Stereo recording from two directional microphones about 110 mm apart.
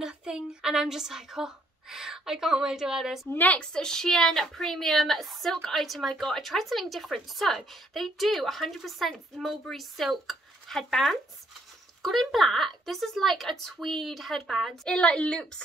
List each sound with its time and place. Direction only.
0.0 s a woman's voice: 5° right (ahead or behind)
3.3 s a woman's voice: 10° left (ahead or behind)